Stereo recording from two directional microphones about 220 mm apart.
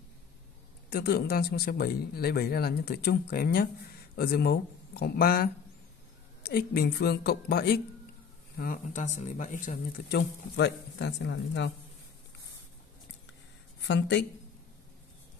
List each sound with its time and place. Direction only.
0.8 s speech: 45° left (ahead or behind)
13.7 s speech: 55° left (ahead or behind)